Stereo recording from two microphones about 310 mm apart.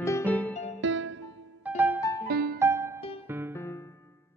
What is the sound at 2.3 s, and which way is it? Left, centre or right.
Music, right.